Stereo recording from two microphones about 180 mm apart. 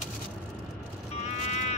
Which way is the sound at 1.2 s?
40° left (ahead or behind).